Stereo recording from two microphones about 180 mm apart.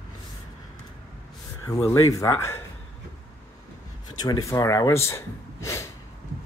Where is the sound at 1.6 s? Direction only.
15° left (ahead or behind).